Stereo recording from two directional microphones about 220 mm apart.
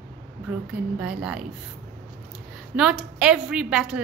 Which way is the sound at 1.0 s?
5° right (ahead or behind).